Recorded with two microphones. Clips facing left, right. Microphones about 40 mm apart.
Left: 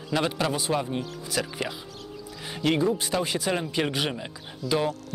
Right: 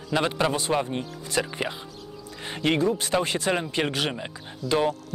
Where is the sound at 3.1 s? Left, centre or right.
Centre.